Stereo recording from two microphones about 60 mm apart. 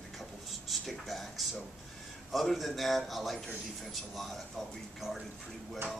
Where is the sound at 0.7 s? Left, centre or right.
Centre.